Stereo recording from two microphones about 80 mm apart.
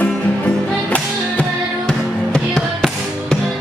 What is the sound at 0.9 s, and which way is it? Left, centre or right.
Music, centre.